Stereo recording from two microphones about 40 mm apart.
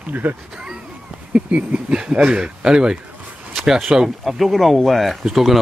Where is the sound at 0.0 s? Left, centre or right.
Right.